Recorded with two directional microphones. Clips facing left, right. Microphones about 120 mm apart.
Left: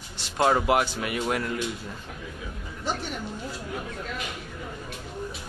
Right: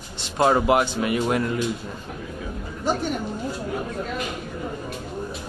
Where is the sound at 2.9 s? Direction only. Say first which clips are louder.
Right 6 dB; 45° right (ahead or behind).